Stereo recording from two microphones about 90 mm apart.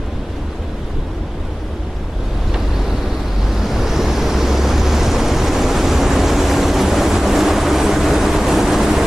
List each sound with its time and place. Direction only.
3.5 s waves: 5° right (ahead or behind)